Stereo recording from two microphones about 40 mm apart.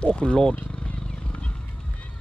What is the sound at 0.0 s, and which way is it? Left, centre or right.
Speech, left.